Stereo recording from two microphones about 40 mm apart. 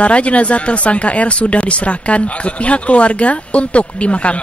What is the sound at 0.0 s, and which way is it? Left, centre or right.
Speech, left.